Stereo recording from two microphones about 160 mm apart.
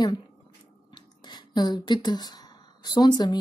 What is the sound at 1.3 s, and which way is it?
Speech, 25° left (ahead or behind).